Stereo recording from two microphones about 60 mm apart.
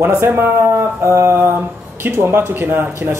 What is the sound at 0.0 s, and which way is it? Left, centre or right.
Speech, right.